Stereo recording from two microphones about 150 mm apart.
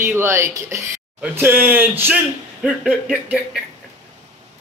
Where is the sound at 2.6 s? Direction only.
5° right (ahead or behind).